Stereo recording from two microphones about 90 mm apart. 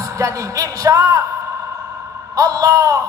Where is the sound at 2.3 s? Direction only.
40° right (ahead or behind).